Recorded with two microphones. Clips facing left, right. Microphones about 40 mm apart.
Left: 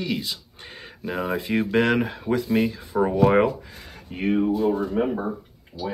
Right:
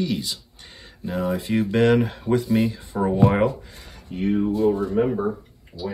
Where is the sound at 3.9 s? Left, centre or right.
Left.